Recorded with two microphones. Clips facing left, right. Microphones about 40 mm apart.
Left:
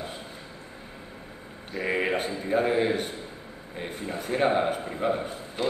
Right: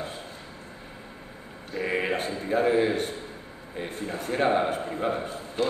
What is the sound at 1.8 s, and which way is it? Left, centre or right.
A man's voice, centre.